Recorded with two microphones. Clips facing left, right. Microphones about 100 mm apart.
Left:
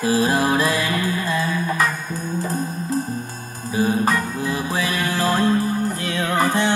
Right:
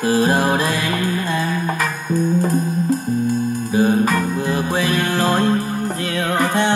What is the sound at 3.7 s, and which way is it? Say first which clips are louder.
Music: right 3 dB; 35° right (ahead or behind).